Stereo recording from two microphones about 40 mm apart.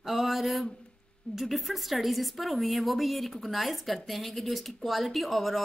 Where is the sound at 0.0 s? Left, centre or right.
Centre.